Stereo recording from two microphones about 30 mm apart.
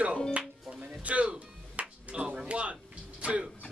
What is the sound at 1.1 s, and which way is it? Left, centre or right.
Music, right.